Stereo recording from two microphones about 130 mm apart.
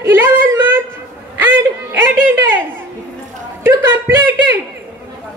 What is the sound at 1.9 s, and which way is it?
Speech, 15° right (ahead or behind).